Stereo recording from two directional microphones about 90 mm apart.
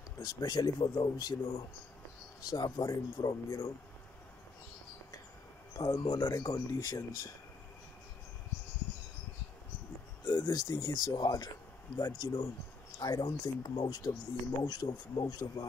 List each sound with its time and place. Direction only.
0.2 s speech: 45° left (ahead or behind)
5.8 s speech: 40° left (ahead or behind)
10.2 s speech: 35° left (ahead or behind)
13.0 s speech: 50° left (ahead or behind)